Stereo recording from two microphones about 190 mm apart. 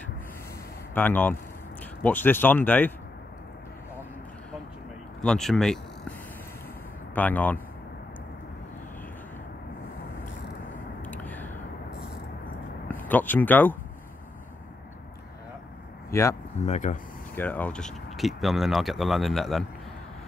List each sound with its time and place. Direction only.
0.9 s speech: 10° left (ahead or behind)
5.2 s speech: 5° left (ahead or behind)
7.2 s speech: 10° left (ahead or behind)
11.1 s a sound: 10° left (ahead or behind)
12.9 s speech: 10° left (ahead or behind)
16.1 s speech: 15° left (ahead or behind)
16.6 s speech: 40° left (ahead or behind)
17.4 s speech: 10° left (ahead or behind)